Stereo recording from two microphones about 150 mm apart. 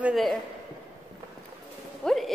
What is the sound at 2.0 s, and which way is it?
Speech, 5° left (ahead or behind).